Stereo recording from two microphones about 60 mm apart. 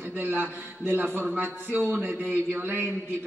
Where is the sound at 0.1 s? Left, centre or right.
Right.